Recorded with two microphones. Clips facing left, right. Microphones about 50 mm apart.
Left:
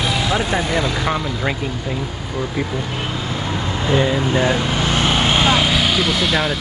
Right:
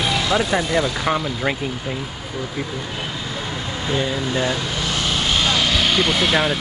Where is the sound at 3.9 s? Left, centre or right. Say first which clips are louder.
Left 5 dB; left.